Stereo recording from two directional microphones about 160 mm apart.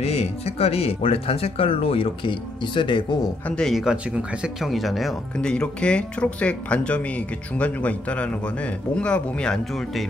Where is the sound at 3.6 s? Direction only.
Centre (ahead or behind).